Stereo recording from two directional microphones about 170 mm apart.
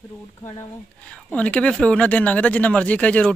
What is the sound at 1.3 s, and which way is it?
Speech, 5° left (ahead or behind).